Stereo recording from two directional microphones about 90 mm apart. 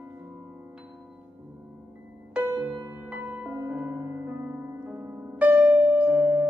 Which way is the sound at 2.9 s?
20° right (ahead or behind).